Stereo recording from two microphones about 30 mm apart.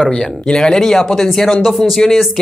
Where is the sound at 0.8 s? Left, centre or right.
Centre.